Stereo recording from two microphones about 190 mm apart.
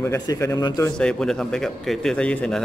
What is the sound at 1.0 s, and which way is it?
Speech, 5° left (ahead or behind).